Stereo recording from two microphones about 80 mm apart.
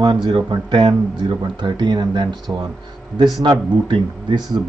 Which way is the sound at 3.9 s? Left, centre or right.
Right.